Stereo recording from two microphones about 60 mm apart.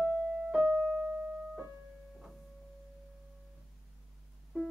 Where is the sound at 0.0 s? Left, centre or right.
Centre.